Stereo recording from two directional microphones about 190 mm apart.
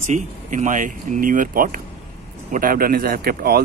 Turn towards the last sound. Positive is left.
turn(degrees=-55)  # may be behind; listen again after turning